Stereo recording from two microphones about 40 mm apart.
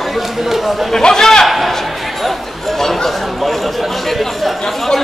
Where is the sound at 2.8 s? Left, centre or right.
Centre.